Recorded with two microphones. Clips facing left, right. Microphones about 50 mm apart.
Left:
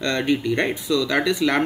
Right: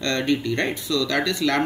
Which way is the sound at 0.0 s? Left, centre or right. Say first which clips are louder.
Left 1 dB; centre.